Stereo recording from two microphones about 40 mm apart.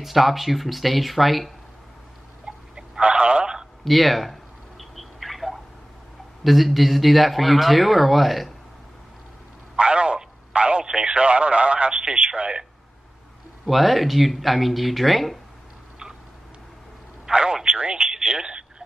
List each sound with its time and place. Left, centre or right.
0.0 s speech: centre
2.4 s telephone: right
3.8 s mouse: centre
6.4 s speech: centre
9.8 s a sound: right
10.9 s speech: right
13.7 s speech: centre
17.3 s speech: centre
18.1 s telephone: right